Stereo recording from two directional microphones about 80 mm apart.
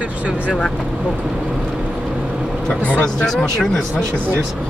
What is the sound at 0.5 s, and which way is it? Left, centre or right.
Speech, centre.